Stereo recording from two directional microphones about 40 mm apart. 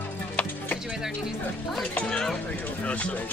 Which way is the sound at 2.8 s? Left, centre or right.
Left.